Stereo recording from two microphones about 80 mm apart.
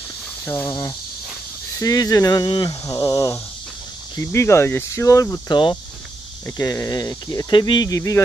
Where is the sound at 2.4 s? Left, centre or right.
Left.